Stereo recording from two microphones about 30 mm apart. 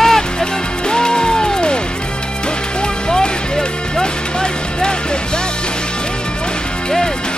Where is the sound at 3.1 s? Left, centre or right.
Left.